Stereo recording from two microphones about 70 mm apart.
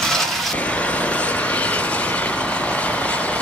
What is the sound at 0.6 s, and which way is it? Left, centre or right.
Vehicle, centre.